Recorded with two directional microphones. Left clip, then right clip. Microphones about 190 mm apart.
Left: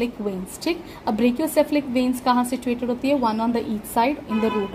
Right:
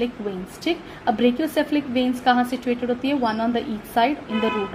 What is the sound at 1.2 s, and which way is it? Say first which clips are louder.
A woman's voice: left 4 dB; 40° left (ahead or behind).